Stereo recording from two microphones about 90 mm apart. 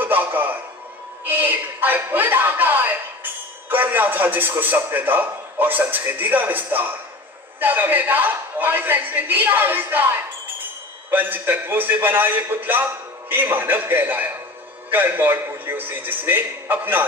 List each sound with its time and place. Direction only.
0.0 s music: 20° right (ahead or behind)
1.2 s a sound: 20° right (ahead or behind)
3.6 s a man's voice: 20° right (ahead or behind)